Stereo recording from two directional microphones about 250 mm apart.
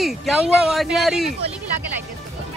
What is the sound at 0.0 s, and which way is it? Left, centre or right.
Speech, centre.